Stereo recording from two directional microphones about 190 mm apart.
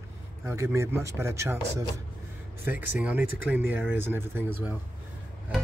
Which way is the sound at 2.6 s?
10° right (ahead or behind).